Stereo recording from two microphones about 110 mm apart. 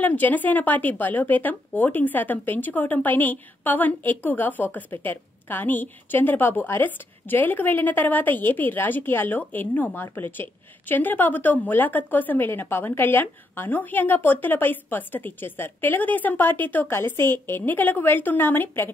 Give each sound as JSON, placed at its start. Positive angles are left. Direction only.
{"t": 0.0, "sound": "a woman's voice", "side_deg": 15}